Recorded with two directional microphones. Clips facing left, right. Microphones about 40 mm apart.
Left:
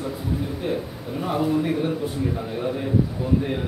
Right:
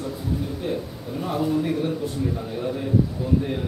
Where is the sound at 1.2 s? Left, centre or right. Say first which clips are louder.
Left 1 dB; left.